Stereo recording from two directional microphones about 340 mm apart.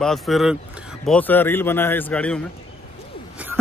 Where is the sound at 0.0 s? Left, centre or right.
Centre.